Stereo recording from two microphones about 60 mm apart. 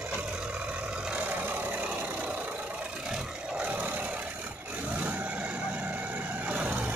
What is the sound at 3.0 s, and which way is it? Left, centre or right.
Vehicle, centre.